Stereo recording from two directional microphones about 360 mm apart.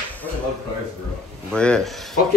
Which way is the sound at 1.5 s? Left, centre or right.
Centre.